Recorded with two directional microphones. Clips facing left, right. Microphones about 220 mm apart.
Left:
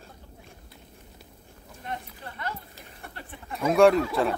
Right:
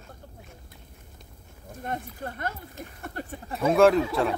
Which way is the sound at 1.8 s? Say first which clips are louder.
Right 4 dB; 50° right (ahead or behind).